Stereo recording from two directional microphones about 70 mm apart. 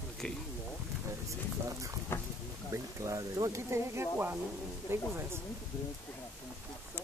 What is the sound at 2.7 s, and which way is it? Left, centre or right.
Speech, right.